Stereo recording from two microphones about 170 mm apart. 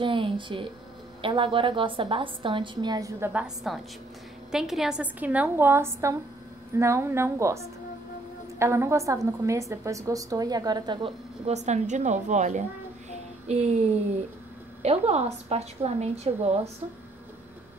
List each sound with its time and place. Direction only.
0.0 s a sound: 30° right (ahead or behind)
1.2 s a woman's voice: 30° right (ahead or behind)
3.3 s a woman's voice: centre (ahead or behind); by 16.7 s 40° right (ahead or behind)